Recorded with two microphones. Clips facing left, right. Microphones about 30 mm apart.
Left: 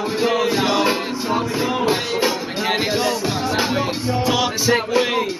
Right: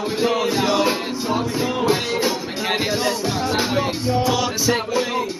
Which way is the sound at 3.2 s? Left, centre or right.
Centre.